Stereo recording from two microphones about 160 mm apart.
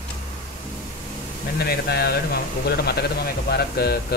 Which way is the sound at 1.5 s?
75° left (ahead or behind).